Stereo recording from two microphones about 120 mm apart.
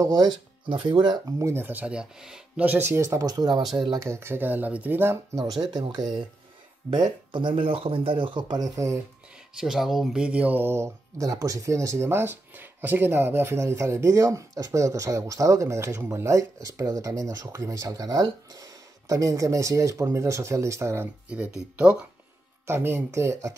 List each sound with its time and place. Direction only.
0.0 s speech: 30° right (ahead or behind)
0.7 s speech: 40° right (ahead or behind)
1.4 s speech: 20° right (ahead or behind)
5.4 s speech: 35° right (ahead or behind)
9.6 s speech: centre (ahead or behind); by 21.1 s 20° right (ahead or behind)
21.3 s speech: 10° right (ahead or behind)
22.7 s speech: 20° right (ahead or behind)